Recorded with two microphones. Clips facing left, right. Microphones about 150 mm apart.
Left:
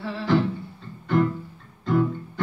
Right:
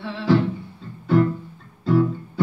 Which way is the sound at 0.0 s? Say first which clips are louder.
Even; centre (ahead or behind).